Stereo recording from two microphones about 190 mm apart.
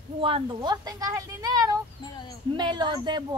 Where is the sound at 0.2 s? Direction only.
25° right (ahead or behind).